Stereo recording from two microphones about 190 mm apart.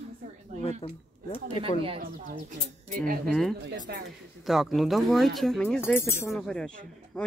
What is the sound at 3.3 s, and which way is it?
Speech, centre (ahead or behind).